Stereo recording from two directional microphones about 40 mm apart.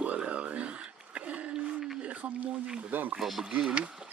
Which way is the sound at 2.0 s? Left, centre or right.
Right.